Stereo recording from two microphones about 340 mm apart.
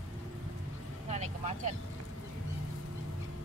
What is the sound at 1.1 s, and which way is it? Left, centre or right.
Vehicle, centre.